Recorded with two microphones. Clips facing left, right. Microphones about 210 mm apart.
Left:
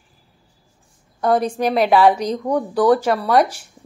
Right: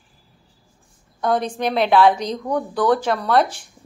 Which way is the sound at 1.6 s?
10° left (ahead or behind).